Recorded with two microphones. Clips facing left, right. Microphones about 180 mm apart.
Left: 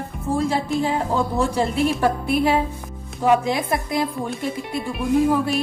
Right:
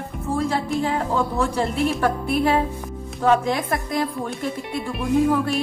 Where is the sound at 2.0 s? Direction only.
15° left (ahead or behind).